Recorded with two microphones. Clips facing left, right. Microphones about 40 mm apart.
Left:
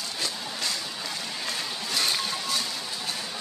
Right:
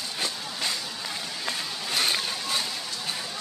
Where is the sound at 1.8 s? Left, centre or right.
Centre.